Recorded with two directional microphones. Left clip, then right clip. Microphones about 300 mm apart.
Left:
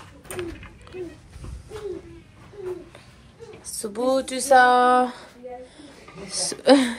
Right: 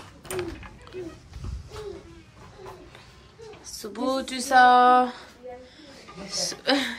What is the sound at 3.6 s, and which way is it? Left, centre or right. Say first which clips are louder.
Speech: left 5 dB; centre.